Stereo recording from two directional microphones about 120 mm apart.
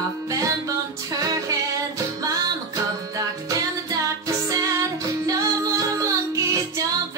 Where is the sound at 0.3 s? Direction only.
30° right (ahead or behind).